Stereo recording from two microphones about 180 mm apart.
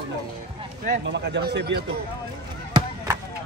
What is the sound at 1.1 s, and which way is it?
Speech, 75° right (ahead or behind).